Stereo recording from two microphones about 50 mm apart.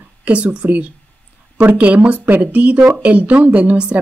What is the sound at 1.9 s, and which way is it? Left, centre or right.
Speech, right.